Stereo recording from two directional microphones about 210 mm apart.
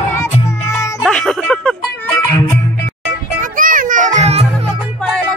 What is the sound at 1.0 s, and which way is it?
Music, centre (ahead or behind).